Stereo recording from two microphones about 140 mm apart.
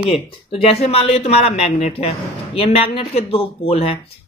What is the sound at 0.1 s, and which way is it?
Speech, 40° left (ahead or behind).